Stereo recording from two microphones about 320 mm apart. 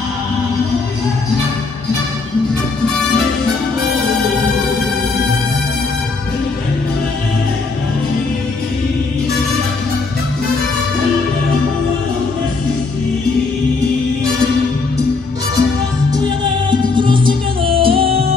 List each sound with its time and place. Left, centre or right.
16.9 s music: centre